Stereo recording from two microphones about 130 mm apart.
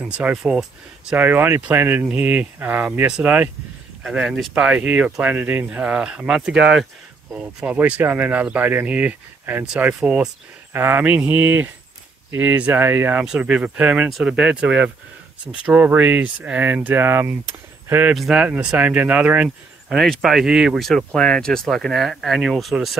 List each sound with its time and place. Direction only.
0.0 s speech: 10° right (ahead or behind)
1.1 s speech: 15° right (ahead or behind)
18.1 s speech: 5° right (ahead or behind)
20.0 s speech: centre (ahead or behind)